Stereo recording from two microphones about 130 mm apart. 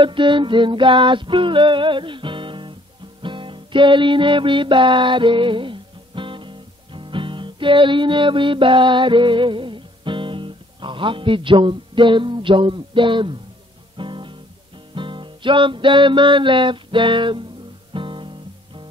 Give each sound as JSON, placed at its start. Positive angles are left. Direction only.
{"t": 0.0, "sound": "music", "side_deg": -40}
{"t": 13.9, "sound": "guitar", "side_deg": -40}
{"t": 15.0, "sound": "music", "side_deg": -40}